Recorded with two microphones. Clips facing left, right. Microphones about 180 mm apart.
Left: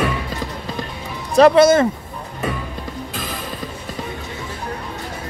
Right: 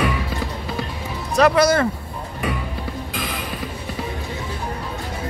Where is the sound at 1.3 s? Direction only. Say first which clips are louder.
Left 5 dB; 25° left (ahead or behind).